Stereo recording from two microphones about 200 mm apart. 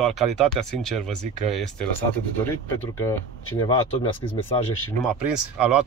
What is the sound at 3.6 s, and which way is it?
Speech, 25° left (ahead or behind).